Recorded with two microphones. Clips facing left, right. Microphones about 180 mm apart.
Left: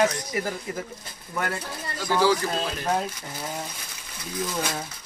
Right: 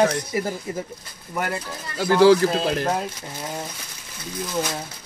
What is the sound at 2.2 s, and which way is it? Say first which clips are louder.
Speech: right 8 dB; 70° right (ahead or behind).